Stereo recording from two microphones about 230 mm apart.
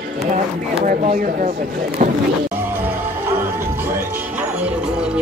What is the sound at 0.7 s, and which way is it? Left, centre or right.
Speech, right.